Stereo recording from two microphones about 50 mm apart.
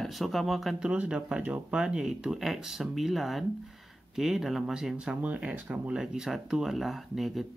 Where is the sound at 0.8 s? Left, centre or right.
Centre.